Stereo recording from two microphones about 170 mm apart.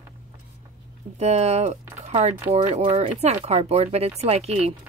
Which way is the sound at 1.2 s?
40° right (ahead or behind).